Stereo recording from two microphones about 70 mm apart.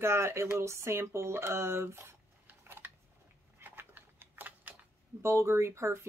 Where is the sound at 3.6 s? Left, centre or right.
Right.